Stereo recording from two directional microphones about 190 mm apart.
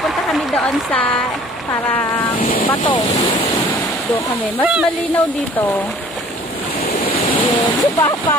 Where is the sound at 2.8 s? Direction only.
25° left (ahead or behind).